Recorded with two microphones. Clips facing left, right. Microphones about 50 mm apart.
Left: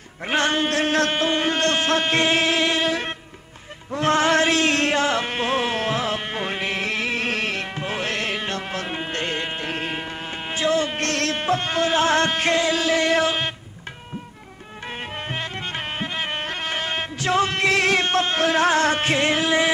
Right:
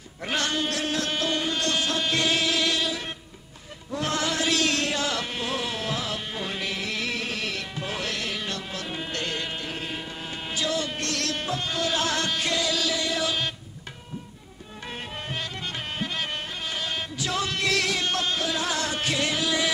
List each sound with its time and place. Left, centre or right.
0.3 s a sound: left
1.4 s music: left
3.9 s music: left
9.7 s a sound: left
10.5 s music: left
15.2 s music: left
16.4 s music: left